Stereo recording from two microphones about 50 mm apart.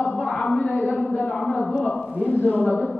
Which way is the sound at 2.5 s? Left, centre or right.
Right.